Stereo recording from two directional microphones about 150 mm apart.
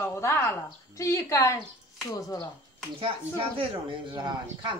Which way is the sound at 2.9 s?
35° right (ahead or behind).